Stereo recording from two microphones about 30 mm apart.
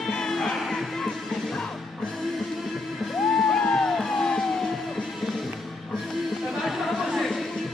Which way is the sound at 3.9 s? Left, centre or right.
Centre.